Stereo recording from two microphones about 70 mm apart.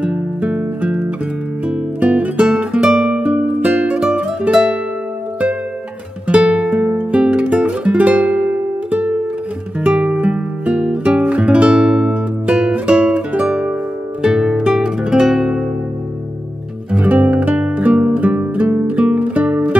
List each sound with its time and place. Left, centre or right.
0.0 s music: centre
6.2 s music: centre
16.9 s music: right